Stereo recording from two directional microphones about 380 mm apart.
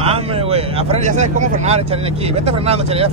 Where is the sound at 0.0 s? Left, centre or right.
Centre.